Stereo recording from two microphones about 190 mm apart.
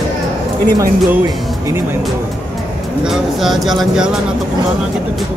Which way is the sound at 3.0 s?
Centre (ahead or behind).